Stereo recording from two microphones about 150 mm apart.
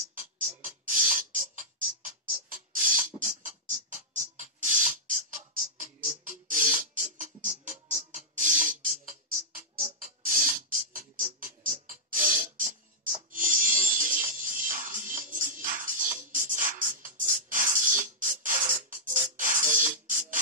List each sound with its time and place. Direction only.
0.1 s music: 60° right (ahead or behind)
2.2 s a sound: 65° right (ahead or behind)
3.2 s music: 60° right (ahead or behind)